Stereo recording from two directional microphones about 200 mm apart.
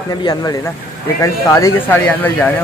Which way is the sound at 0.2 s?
20° left (ahead or behind).